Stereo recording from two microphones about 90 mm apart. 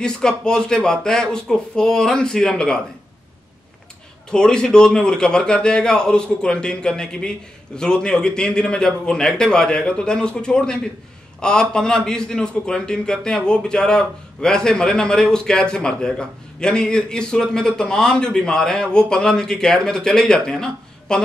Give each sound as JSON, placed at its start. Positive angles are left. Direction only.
{"t": 0.0, "sound": "a man's voice", "side_deg": 10}
{"t": 4.3, "sound": "a man's voice", "side_deg": 10}